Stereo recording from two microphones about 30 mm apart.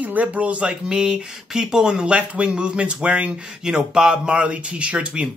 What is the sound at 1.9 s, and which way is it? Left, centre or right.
Speech, right.